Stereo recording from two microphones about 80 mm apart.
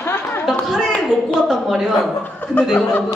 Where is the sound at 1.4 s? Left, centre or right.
Centre.